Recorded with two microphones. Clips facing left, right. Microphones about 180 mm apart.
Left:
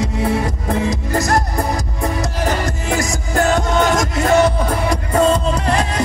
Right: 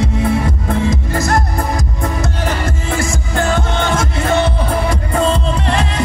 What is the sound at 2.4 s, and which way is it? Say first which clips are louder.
Music: even; 40° left (ahead or behind).